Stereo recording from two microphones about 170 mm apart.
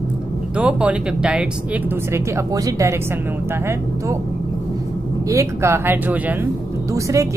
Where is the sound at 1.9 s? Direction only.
20° right (ahead or behind).